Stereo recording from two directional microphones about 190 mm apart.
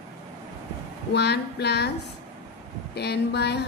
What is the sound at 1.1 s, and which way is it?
Speech, 60° left (ahead or behind).